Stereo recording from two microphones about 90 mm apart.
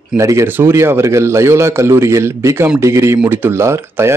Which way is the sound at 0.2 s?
35° right (ahead or behind).